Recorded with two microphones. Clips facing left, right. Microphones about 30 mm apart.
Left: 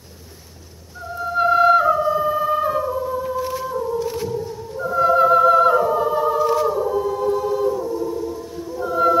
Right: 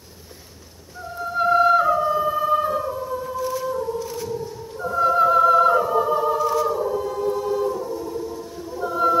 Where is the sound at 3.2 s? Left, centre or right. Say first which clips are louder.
Left 2 dB; left.